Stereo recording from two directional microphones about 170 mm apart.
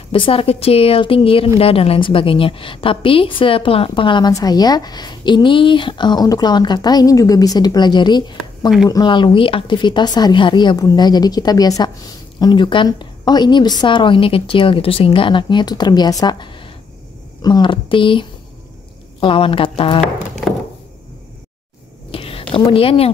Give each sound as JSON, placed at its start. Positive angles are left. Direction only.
{"t": 0.1, "sound": "a woman's voice", "side_deg": 30}
{"t": 22.1, "sound": "a sound", "side_deg": 35}
{"t": 22.5, "sound": "speech", "side_deg": 35}